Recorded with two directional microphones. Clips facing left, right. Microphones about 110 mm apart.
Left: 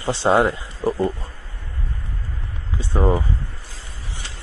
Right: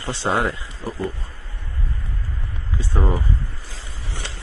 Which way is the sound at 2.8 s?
25° left (ahead or behind).